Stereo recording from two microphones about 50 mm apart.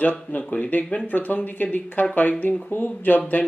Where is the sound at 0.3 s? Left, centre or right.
Left.